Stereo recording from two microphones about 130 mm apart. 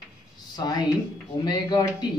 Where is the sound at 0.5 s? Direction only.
30° left (ahead or behind).